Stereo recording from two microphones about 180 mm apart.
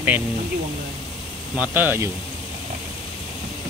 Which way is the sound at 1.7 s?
10° right (ahead or behind).